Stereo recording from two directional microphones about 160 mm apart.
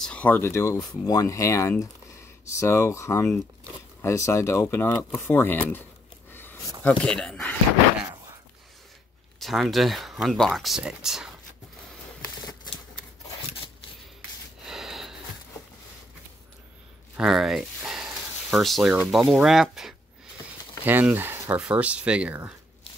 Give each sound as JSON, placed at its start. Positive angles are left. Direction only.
{"t": 0.0, "sound": "speech", "side_deg": 10}
{"t": 6.3, "sound": "a sound", "side_deg": 15}
{"t": 6.8, "sound": "speech", "side_deg": 5}
{"t": 9.4, "sound": "speech", "side_deg": 0}
{"t": 14.6, "sound": "snort", "side_deg": 0}
{"t": 17.2, "sound": "speech", "side_deg": 0}